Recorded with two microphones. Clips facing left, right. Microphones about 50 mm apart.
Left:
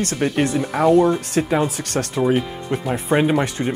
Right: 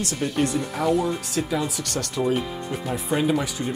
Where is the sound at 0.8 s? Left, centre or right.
Left.